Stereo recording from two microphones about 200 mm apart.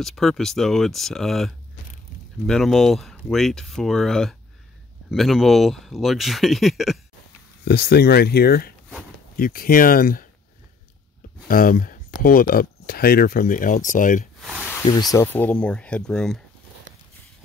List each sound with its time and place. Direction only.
0.0 s speech: centre (ahead or behind)
7.6 s speech: 55° left (ahead or behind)
11.4 s speech: 45° left (ahead or behind)
14.4 s a sound: 5° right (ahead or behind)
15.1 s speech: 10° left (ahead or behind)